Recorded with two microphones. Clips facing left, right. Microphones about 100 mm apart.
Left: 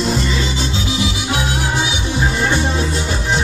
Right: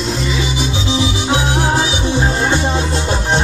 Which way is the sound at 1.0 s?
30° right (ahead or behind).